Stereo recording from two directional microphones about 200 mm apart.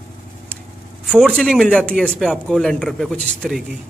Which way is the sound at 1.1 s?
5° left (ahead or behind).